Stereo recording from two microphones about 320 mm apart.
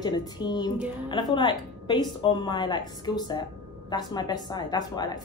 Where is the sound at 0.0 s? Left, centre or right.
Centre.